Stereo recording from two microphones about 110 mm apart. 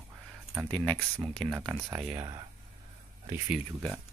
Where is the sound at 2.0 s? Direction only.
45° right (ahead or behind).